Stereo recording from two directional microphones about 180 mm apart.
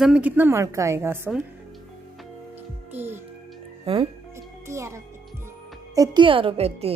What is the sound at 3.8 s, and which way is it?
Speech, 30° right (ahead or behind).